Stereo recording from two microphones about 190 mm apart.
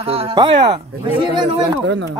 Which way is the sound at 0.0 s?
30° right (ahead or behind).